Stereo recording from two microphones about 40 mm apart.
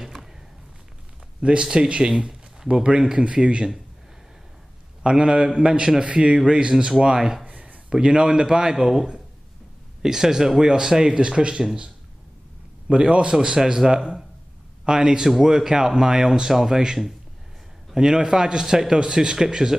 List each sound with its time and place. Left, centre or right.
0.0 s a sound: centre
1.4 s a man's voice: right
5.1 s a man's voice: centre
7.2 s a man's voice: centre
7.4 s a sound: right
7.9 s a man's voice: right
12.9 s a man's voice: right
13.6 s a man's voice: centre
13.8 s a man's voice: right